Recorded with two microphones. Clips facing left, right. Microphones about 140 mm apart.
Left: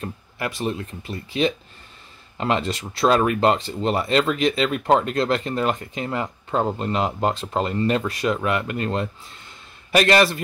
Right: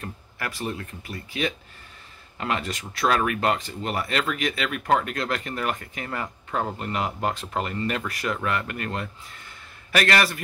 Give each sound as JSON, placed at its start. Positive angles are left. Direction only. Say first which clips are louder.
{"t": 0.0, "sound": "speech", "louder": "left 5 dB", "side_deg": 25}